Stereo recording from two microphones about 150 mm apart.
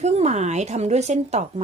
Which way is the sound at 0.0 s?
50° right (ahead or behind).